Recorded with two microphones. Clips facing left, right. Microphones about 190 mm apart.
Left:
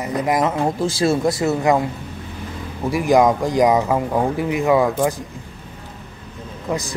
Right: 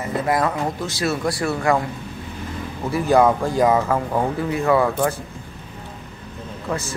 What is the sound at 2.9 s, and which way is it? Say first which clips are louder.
Speech: left 1 dB; 15° left (ahead or behind).